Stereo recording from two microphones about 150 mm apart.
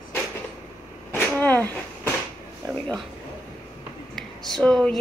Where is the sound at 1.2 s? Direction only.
10° left (ahead or behind).